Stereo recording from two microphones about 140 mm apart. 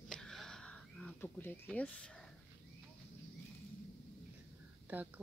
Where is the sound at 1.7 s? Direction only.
10° left (ahead or behind).